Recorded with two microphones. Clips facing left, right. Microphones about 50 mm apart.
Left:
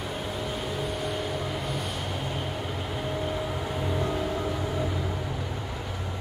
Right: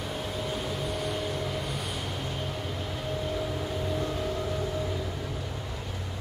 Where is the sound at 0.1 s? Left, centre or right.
Centre.